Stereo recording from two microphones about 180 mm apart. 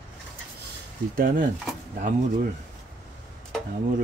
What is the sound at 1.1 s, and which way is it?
Speech, 50° right (ahead or behind).